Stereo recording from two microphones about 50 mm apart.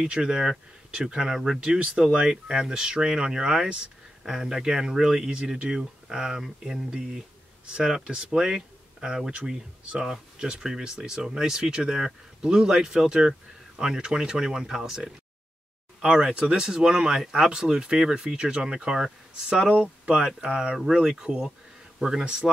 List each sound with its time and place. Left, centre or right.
0.0 s speech: centre
10.4 s speech: centre